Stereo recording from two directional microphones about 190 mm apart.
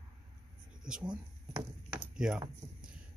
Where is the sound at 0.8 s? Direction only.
5° right (ahead or behind).